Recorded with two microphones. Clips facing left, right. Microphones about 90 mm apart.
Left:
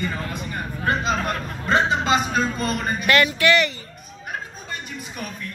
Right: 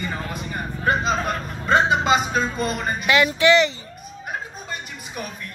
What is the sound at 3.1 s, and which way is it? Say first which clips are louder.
Speech: right 3 dB; 20° right (ahead or behind).